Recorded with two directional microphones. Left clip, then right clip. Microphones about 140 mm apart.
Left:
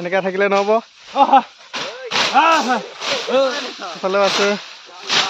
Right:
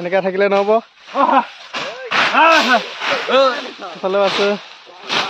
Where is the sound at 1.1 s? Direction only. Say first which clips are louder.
Left 1 dB; 55° left (ahead or behind).